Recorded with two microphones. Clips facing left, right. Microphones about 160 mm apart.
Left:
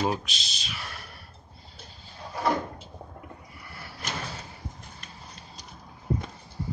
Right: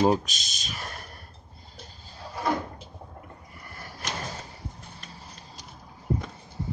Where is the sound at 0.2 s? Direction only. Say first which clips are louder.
Left 1 dB; 45° right (ahead or behind).